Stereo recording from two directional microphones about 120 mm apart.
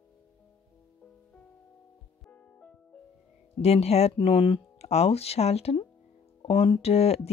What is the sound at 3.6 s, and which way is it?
Speech, 60° left (ahead or behind).